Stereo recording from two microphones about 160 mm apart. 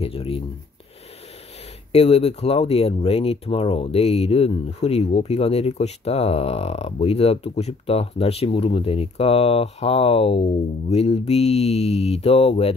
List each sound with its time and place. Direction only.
0.0 s speech: 35° left (ahead or behind)
1.9 s speech: 40° left (ahead or behind)